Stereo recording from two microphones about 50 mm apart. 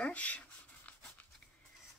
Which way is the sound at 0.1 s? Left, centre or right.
Left.